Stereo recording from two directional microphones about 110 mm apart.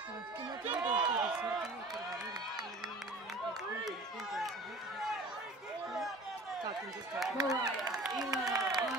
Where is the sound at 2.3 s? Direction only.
40° right (ahead or behind).